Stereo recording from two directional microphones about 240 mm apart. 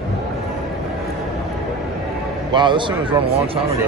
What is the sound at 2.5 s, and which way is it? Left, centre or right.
Speech, centre.